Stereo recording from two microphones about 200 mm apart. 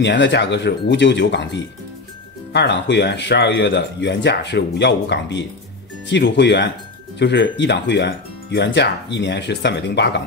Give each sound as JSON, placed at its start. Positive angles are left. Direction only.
{"t": 0.0, "sound": "speech", "side_deg": 60}